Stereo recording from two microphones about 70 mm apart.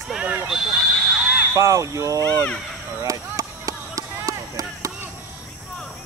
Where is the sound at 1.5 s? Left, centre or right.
Right.